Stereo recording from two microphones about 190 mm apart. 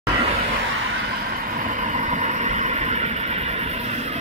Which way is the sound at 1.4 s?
45° right (ahead or behind).